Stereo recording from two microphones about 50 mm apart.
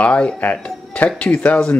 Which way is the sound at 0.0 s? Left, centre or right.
Left.